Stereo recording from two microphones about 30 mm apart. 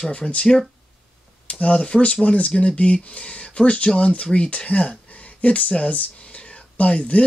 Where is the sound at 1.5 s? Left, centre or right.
Left.